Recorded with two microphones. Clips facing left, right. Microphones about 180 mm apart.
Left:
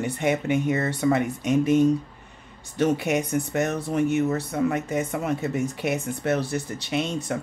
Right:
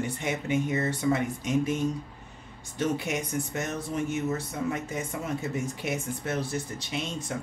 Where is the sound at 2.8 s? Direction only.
65° left (ahead or behind).